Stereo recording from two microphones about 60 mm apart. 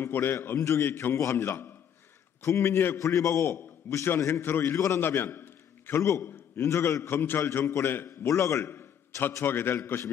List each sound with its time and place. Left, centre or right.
0.0 s a man's voice: left
2.4 s a man's voice: left
3.4 s a man's voice: left
4.7 s a man's voice: left
5.0 s a sound: left
6.0 s a man's voice: left
6.3 s a sound: left
6.7 s a man's voice: left
7.1 s a man's voice: left
8.3 s a man's voice: left
9.4 s a man's voice: left